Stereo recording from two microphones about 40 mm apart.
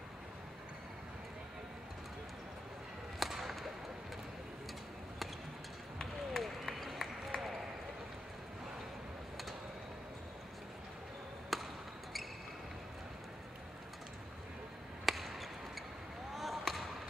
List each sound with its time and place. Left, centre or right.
3.2 s basketball bounce: centre
6.3 s a sound: centre
11.5 s basketball bounce: centre
15.0 s chop: centre
16.3 s basketball bounce: centre